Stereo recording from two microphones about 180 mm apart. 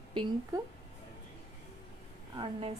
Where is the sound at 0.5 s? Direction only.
20° right (ahead or behind).